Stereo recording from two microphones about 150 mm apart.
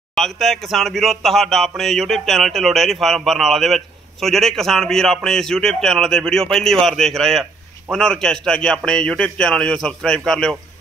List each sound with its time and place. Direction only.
0.1 s speech: centre (ahead or behind)